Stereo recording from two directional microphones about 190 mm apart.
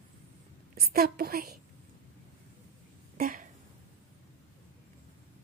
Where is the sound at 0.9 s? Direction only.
55° right (ahead or behind).